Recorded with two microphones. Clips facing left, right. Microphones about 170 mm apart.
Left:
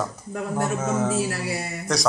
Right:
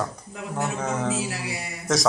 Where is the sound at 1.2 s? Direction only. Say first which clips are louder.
Left 4 dB; 45° left (ahead or behind).